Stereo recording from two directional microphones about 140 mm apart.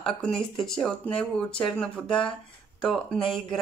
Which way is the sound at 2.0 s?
35° left (ahead or behind).